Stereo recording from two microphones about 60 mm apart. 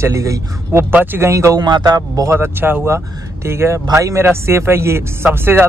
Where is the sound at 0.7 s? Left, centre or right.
Right.